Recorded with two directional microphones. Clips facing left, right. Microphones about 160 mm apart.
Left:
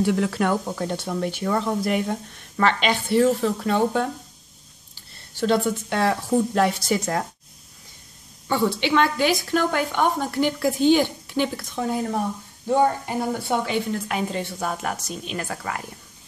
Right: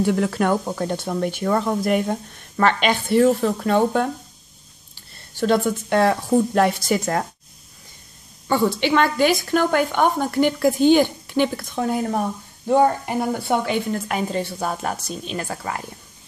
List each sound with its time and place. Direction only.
0.0 s speech: 45° right (ahead or behind)
5.4 s speech: 50° right (ahead or behind)
8.5 s a woman's voice: 45° right (ahead or behind); by 15.8 s 30° right (ahead or behind)